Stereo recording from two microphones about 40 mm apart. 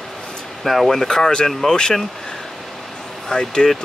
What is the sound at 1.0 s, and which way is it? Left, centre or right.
Speech, centre.